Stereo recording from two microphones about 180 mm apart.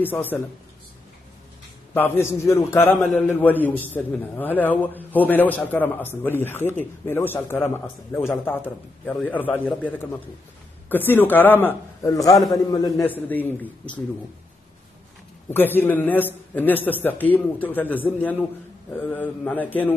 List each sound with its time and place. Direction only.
0.0 s a man's voice: 10° left (ahead or behind)
2.0 s a man's voice: 10° left (ahead or behind)
13.0 s a man's voice: 10° left (ahead or behind)
15.5 s a man's voice: 10° left (ahead or behind)